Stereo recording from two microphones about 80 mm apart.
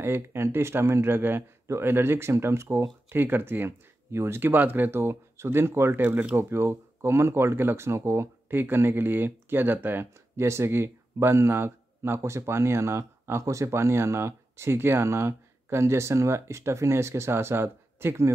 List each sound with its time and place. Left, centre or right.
0.0 s speech: right